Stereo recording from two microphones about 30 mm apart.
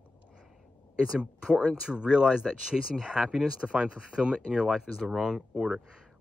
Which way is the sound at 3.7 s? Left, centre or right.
Right.